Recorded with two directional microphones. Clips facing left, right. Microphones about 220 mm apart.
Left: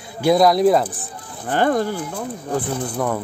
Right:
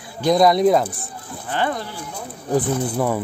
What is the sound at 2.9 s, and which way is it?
Speech, 5° right (ahead or behind).